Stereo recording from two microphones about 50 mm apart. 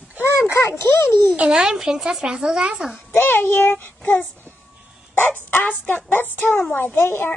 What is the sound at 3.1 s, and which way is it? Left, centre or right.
Speech, left.